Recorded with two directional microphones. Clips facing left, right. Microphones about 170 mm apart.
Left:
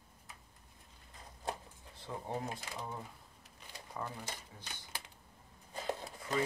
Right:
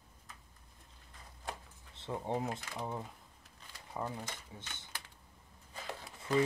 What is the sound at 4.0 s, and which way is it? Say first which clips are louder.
Speech: right 3 dB; 20° right (ahead or behind).